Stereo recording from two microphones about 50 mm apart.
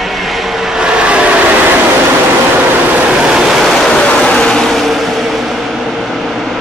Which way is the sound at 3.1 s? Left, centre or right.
Centre.